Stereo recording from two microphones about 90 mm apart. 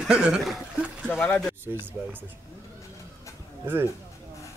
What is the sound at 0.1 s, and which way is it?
Speech, 10° right (ahead or behind).